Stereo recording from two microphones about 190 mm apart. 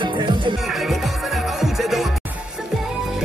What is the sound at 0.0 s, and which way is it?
Music, 25° right (ahead or behind).